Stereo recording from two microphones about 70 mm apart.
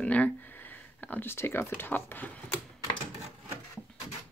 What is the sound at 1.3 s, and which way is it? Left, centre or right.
Speech, left.